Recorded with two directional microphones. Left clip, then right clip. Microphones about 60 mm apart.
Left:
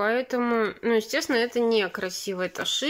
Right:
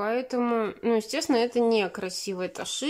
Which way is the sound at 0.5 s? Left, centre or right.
Right.